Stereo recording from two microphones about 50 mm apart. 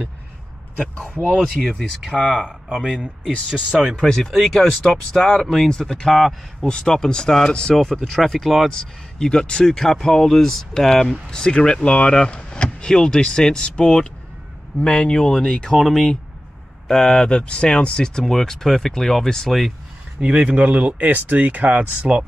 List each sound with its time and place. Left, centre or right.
0.7 s a man's voice: left
1.6 s speech: centre
2.0 s speech: centre
3.0 s speech: centre
4.0 s speech: centre
5.7 s speech: centre
6.6 s speech: centre
8.7 s speech: centre
20.2 s speech: right